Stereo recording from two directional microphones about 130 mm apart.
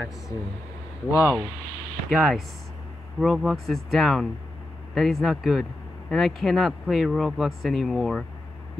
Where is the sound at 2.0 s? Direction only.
Centre (ahead or behind).